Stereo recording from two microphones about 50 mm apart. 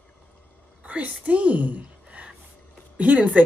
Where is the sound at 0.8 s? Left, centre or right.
Right.